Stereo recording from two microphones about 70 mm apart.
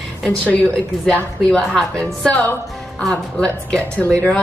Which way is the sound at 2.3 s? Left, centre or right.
Left.